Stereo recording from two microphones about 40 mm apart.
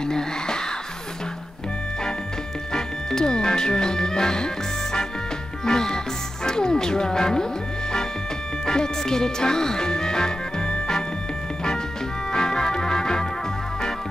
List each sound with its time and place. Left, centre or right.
0.0 s music: centre
2.7 s music: centre
5.7 s music: centre
6.4 s speech: centre
8.6 s music: centre
12.3 s organ: centre